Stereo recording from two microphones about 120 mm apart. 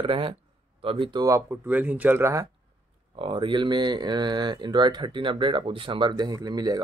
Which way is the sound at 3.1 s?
45° right (ahead or behind).